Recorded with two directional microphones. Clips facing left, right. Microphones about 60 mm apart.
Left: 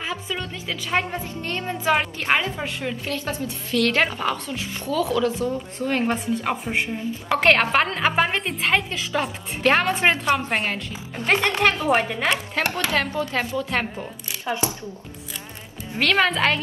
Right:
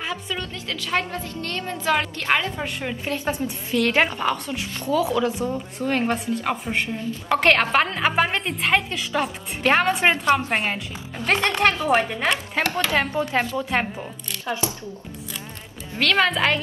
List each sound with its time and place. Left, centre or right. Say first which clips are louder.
0.0 s a woman's voice: even; centre
3.1 s a woman's voice: right 2 dB; centre
4.8 s a woman's voice: right 1 dB; centre
5.8 s a woman's voice: right 1 dB; centre
12.6 s a woman's voice: right 3 dB; centre
13.7 s a woman's voice: right 1 dB; centre
16.0 s a woman's voice: even; centre